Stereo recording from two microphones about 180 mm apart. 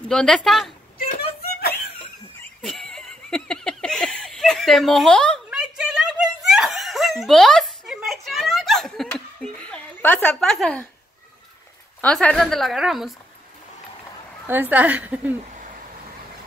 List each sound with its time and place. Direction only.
0.1 s a woman's voice: 5° left (ahead or behind)
1.6 s laughter: 60° left (ahead or behind)
2.6 s giggle: centre (ahead or behind)
12.0 s a woman's voice: 5° left (ahead or behind)
14.4 s a woman's voice: 10° right (ahead or behind)
15.5 s a sound: 45° right (ahead or behind)